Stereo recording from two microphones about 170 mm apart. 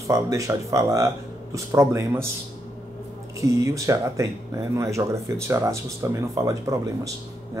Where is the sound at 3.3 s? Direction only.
20° right (ahead or behind).